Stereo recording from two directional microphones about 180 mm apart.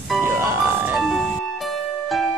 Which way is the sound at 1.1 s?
Centre (ahead or behind).